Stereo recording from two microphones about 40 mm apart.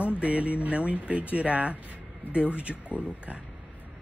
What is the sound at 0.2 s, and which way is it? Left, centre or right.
Speech, right.